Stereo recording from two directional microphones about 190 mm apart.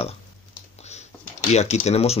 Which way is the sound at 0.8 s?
35° left (ahead or behind).